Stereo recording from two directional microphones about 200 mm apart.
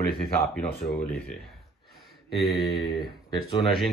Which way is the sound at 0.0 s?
50° left (ahead or behind).